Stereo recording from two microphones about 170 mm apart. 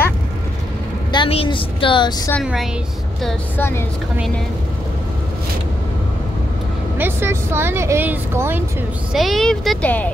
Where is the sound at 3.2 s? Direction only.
10° left (ahead or behind).